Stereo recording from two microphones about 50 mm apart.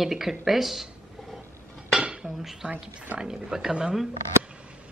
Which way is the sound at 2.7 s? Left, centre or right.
Right.